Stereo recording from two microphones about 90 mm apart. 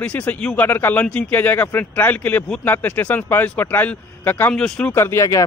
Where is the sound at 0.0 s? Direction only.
15° left (ahead or behind).